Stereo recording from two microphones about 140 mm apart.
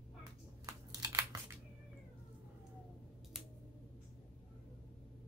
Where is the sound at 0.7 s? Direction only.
25° right (ahead or behind).